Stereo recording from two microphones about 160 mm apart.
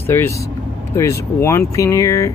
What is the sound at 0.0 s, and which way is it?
Speech, 15° left (ahead or behind).